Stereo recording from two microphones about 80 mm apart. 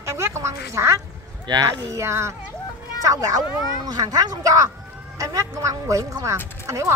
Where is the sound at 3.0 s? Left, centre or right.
Right.